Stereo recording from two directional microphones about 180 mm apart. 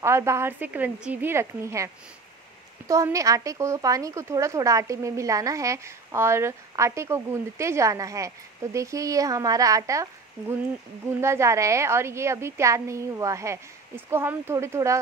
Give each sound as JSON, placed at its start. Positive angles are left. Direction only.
{"t": 0.0, "sound": "speech", "side_deg": -15}
{"t": 2.9, "sound": "speech", "side_deg": -15}
{"t": 11.1, "sound": "speech", "side_deg": -15}